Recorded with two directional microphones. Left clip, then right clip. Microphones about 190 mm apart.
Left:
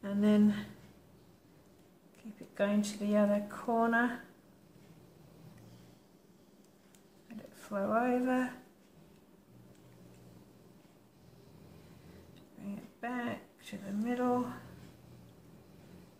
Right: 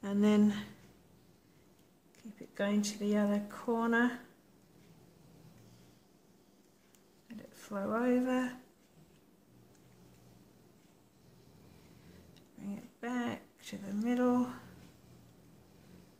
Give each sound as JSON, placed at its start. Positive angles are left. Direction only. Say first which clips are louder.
{"t": 0.0, "sound": "speech", "louder": "even", "side_deg": -50}
{"t": 2.5, "sound": "speech", "louder": "left 2 dB", "side_deg": -45}
{"t": 7.5, "sound": "speech", "louder": "left 4 dB", "side_deg": -45}
{"t": 13.0, "sound": "speech", "louder": "even", "side_deg": -50}